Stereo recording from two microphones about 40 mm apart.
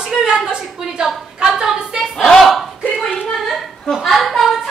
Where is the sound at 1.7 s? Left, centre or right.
Centre.